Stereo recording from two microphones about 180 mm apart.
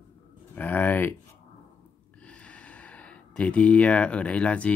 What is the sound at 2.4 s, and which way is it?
Speech, 5° left (ahead or behind).